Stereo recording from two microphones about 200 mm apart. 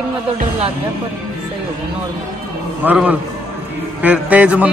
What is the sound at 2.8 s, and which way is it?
Speech, 10° right (ahead or behind).